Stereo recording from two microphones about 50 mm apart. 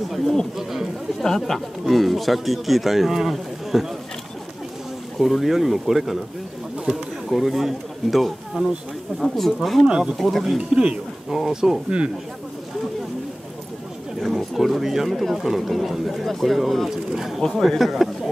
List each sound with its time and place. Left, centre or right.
0.6 s speech: centre
1.2 s speech: centre
5.2 s speech: centre
7.2 s speech: centre
9.8 s speech: centre
10.1 s speech: centre
10.6 s speech: right
11.2 s speech: centre
14.3 s speech: centre